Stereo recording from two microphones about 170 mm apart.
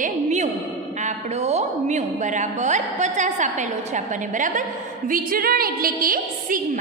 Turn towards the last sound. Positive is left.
turn(degrees=-55)  # may be behind; listen again after turning